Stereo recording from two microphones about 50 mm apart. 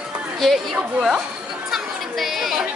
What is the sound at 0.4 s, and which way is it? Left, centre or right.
Speech, centre.